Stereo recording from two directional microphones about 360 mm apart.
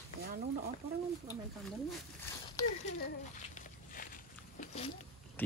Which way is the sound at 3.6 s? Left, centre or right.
Left.